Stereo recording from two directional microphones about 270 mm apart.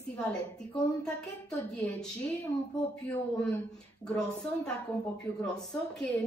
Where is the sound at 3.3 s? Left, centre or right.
Centre.